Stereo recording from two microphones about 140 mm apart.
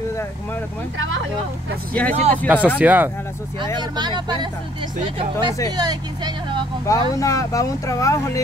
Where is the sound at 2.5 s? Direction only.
10° right (ahead or behind).